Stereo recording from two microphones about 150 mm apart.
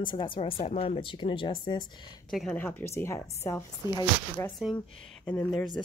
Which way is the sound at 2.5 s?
15° left (ahead or behind).